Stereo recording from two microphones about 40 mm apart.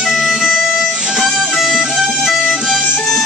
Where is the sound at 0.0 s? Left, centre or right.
Centre.